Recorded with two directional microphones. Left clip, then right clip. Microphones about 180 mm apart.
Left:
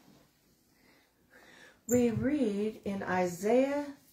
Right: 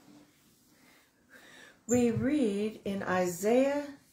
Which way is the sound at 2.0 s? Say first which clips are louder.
Right 3 dB; 30° right (ahead or behind).